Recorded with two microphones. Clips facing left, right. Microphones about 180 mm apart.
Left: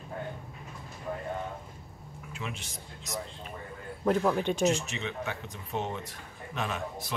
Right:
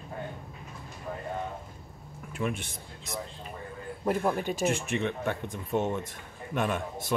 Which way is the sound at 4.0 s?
15° right (ahead or behind).